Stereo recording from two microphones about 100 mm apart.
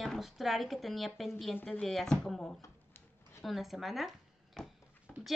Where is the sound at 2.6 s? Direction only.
25° left (ahead or behind).